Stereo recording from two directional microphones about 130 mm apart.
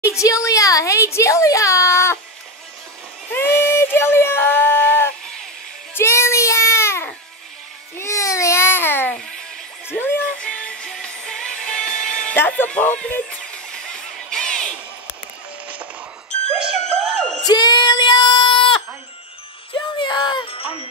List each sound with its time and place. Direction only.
0.0 s a woman's voice: 25° left (ahead or behind)
3.3 s a sound: 15° left (ahead or behind)
5.9 s child singing: 20° left (ahead or behind)
8.0 s baby cry: 25° left (ahead or behind)
9.9 s music: 15° left (ahead or behind)
12.4 s a sound: 15° left (ahead or behind)
16.9 s music: 10° right (ahead or behind)
17.5 s child singing: 30° left (ahead or behind)
19.7 s music: 35° left (ahead or behind)